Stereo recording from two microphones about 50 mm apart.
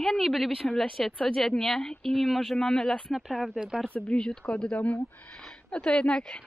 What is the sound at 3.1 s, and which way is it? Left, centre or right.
Speech, centre.